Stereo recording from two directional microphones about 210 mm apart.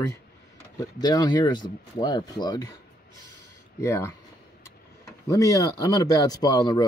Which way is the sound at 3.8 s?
10° left (ahead or behind).